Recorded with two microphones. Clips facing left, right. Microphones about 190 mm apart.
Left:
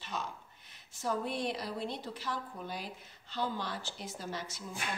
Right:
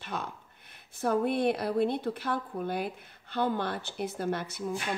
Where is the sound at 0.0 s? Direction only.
55° right (ahead or behind).